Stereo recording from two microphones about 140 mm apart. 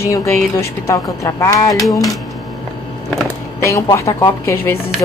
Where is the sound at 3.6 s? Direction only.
20° left (ahead or behind).